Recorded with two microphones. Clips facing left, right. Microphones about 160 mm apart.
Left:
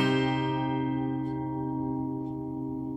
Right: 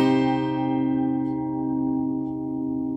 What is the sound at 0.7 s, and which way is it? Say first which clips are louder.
Music: right 7 dB; 20° right (ahead or behind).